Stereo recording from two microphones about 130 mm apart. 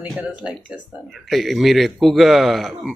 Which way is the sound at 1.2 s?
Centre (ahead or behind).